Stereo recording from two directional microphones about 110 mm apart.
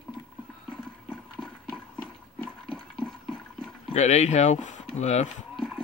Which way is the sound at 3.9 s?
90° left.